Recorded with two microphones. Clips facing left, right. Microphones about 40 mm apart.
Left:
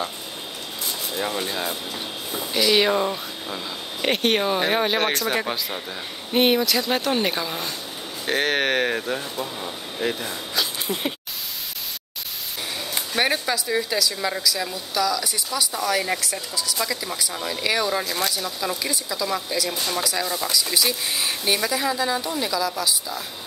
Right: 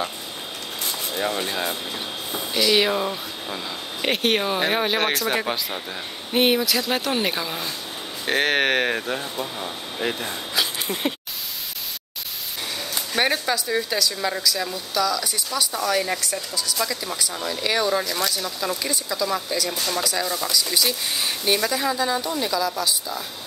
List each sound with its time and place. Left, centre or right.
1.1 s speech: centre
2.5 s speech: centre
13.1 s speech: centre
18.0 s speech: centre
18.3 s speech: centre